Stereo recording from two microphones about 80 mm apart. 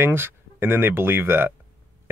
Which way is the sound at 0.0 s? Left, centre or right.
Right.